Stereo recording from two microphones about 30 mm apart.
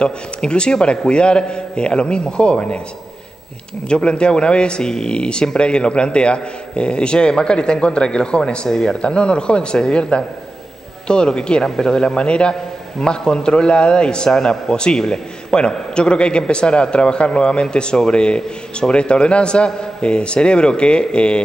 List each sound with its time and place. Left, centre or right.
0.0 s a man's voice: left
3.9 s a man's voice: left
9.0 s a man's voice: left